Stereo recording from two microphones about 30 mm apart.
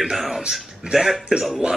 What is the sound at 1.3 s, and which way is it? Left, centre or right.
Speech, right.